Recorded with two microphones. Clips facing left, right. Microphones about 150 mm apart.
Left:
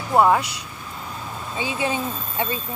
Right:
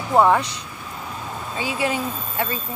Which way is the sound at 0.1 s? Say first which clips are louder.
Right 1 dB; 5° left (ahead or behind).